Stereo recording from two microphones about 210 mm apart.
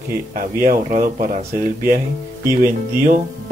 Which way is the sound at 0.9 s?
40° right (ahead or behind).